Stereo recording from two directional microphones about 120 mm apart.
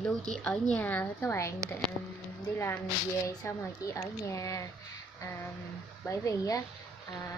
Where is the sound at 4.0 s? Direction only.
25° left (ahead or behind).